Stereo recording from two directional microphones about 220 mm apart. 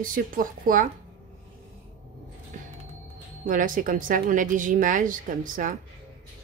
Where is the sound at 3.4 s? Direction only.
40° right (ahead or behind).